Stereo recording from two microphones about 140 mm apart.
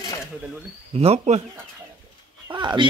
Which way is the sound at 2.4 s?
30° right (ahead or behind).